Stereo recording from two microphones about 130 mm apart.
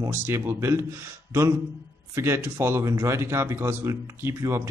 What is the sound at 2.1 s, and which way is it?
Speech, 20° right (ahead or behind).